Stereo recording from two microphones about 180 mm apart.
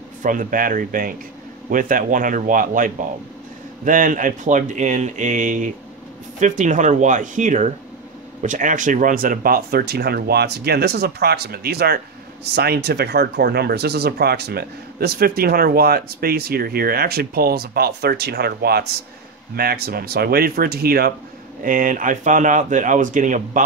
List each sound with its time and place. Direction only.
0.2 s speech: 45° right (ahead or behind)
21.6 s speech: 50° right (ahead or behind)